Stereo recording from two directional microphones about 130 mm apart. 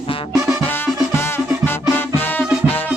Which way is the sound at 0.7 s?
20° left (ahead or behind).